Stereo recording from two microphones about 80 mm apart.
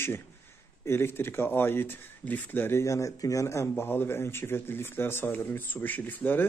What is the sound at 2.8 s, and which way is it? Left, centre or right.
A man's voice, left.